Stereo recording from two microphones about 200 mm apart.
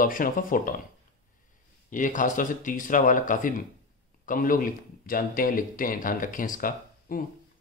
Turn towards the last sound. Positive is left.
turn(degrees=45)  # may be behind; listen again after turning